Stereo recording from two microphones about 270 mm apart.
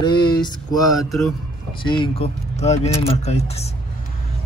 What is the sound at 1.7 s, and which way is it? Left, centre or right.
Speech, centre.